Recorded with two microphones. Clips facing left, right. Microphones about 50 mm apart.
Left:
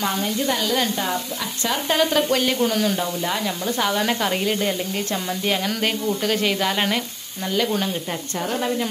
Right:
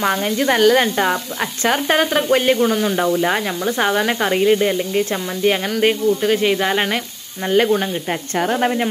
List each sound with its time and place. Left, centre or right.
0.1 s speech: right
2.6 s speech: centre
3.0 s speech: right
4.0 s speech: centre
7.4 s speech: right